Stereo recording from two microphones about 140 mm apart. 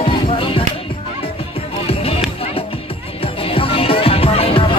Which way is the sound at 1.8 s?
45° left (ahead or behind).